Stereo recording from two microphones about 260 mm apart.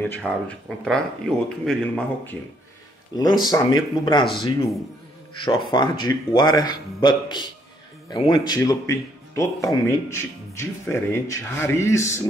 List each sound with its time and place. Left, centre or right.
0.0 s a man's voice: centre
3.1 s speech: centre